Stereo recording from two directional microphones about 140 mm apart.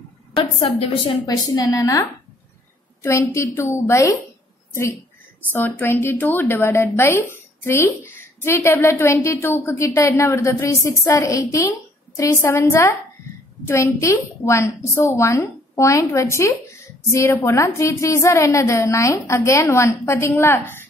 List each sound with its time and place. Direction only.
0.6 s a woman's voice: 40° left (ahead or behind); by 4.2 s 20° left (ahead or behind)
5.5 s a woman's voice: 15° left (ahead or behind)